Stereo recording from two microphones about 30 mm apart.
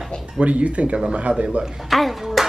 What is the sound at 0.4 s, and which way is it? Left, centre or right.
Speech, right.